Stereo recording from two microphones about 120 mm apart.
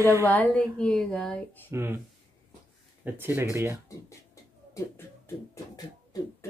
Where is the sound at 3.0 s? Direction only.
20° right (ahead or behind).